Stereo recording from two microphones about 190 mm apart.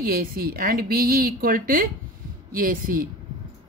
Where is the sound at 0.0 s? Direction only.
50° right (ahead or behind).